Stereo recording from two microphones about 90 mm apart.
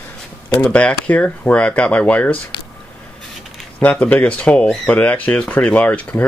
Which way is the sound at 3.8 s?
15° left (ahead or behind).